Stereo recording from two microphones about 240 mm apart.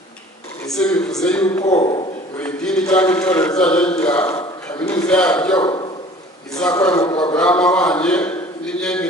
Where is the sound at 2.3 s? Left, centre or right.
Centre.